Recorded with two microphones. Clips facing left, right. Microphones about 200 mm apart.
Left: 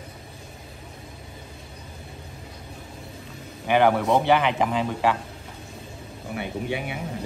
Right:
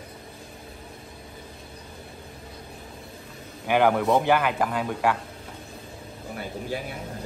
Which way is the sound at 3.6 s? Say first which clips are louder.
Left 1 dB; 5° right (ahead or behind).